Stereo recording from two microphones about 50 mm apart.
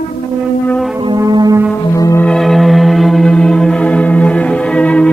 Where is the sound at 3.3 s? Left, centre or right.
Centre.